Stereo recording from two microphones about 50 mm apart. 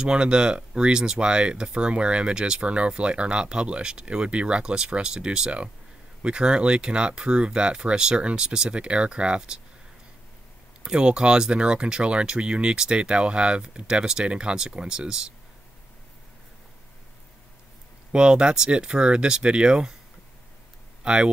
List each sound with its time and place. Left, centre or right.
0.0 s speech: centre
10.8 s speech: centre
18.1 s speech: centre
21.0 s speech: centre